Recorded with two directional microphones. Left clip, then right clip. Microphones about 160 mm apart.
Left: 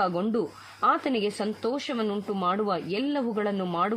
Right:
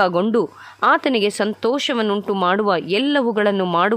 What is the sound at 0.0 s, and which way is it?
Speech, 45° right (ahead or behind).